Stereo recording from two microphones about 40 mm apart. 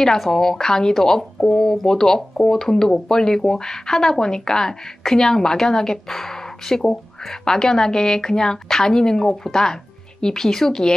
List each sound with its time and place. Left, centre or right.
0.3 s speech: centre